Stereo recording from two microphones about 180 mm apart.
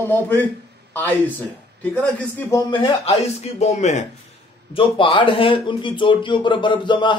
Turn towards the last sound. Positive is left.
turn(degrees=25)  # may be behind; listen again after turning